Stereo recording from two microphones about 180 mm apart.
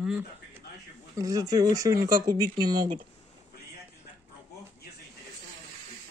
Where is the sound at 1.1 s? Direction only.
20° right (ahead or behind).